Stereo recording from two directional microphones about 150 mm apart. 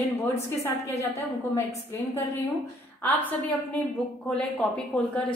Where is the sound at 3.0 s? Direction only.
10° left (ahead or behind).